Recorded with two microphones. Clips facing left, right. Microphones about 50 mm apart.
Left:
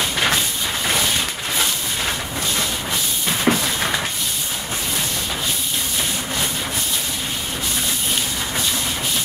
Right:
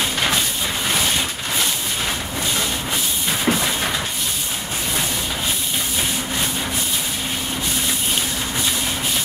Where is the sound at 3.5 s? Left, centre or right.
Left.